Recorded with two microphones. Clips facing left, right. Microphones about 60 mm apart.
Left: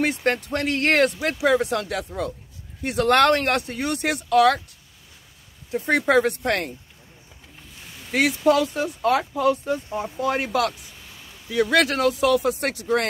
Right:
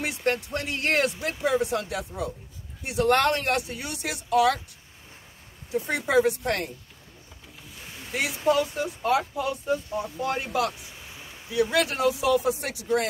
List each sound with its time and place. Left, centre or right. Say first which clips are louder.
0.5 s speech: left 6 dB; left
5.7 s speech: left 6 dB; left
8.1 s speech: left 8 dB; left
8.5 s speech: left 1 dB; left
11.1 s a sound: right 1 dB; centre
11.5 s speech: left 4 dB; left